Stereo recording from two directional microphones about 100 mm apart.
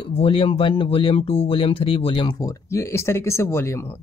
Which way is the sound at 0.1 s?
70° left (ahead or behind).